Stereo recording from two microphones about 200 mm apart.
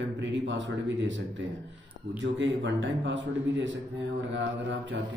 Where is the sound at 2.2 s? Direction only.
65° right (ahead or behind).